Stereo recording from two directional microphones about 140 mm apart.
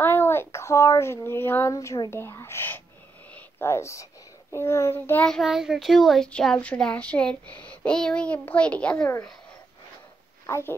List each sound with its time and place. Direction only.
0.0 s a child's voice: 15° left (ahead or behind)
10.4 s a woman's voice: 20° left (ahead or behind)